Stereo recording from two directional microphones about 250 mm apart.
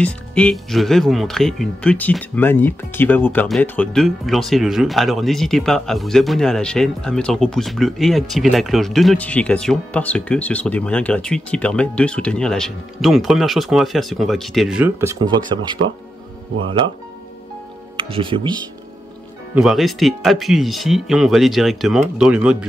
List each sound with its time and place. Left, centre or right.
0.0 s speech: centre
17.9 s speech: right
19.5 s speech: centre